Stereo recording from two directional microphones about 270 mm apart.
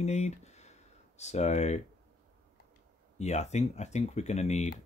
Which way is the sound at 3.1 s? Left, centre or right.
Left.